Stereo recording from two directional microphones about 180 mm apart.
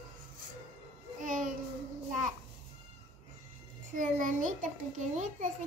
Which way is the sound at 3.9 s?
45° right (ahead or behind).